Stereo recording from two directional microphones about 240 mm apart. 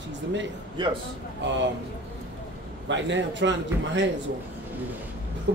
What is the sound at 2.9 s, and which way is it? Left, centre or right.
Speech, right.